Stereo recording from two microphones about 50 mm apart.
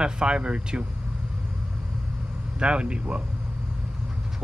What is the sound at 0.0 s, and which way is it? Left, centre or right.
Speech, centre.